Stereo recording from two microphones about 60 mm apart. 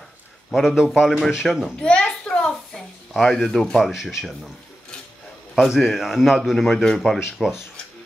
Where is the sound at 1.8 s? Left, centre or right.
Centre.